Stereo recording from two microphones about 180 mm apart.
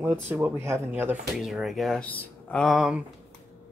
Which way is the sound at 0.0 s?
10° right (ahead or behind).